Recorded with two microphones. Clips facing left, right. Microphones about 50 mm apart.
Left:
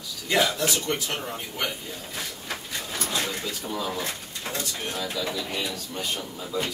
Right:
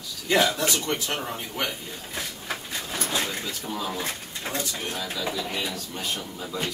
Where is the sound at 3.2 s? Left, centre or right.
Centre.